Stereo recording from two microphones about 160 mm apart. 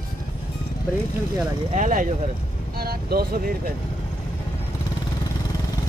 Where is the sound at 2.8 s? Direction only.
75° right (ahead or behind).